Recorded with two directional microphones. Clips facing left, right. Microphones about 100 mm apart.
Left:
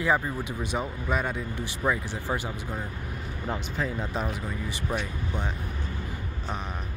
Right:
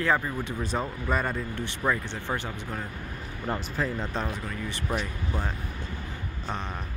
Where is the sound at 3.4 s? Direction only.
Centre (ahead or behind).